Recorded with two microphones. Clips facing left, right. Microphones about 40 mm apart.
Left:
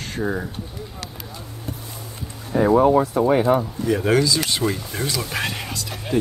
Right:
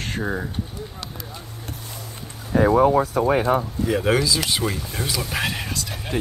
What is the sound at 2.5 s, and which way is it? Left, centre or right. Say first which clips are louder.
Speech: right 1 dB; right.